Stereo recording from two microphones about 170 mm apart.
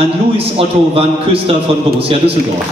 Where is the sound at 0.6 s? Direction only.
35° right (ahead or behind).